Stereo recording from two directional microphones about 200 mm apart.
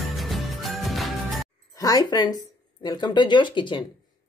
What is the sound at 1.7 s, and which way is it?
Speech, 20° left (ahead or behind).